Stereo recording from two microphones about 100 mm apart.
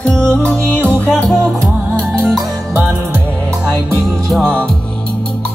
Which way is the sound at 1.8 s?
25° right (ahead or behind).